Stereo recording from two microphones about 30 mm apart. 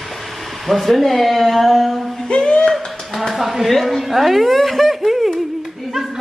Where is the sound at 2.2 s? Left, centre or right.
Left.